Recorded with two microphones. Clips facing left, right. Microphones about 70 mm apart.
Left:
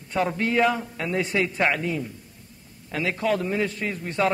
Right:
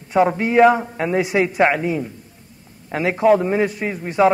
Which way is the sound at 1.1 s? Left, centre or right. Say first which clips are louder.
Right 6 dB; centre.